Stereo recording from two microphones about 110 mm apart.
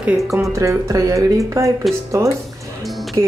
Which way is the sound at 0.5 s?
30° right (ahead or behind).